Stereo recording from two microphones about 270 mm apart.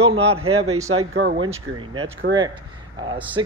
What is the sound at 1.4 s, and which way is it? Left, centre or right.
Speech, centre.